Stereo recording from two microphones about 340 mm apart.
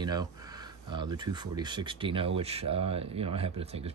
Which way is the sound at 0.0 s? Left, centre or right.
Centre.